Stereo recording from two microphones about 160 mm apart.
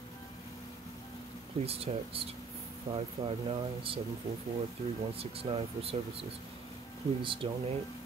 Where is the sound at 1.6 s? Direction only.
40° right (ahead or behind).